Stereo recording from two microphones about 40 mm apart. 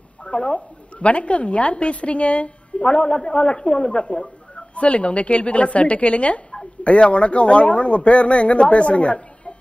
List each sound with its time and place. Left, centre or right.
0.2 s a woman's voice: left